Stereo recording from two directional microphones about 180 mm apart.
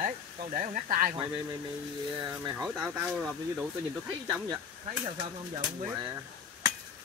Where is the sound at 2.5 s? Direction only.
5° right (ahead or behind).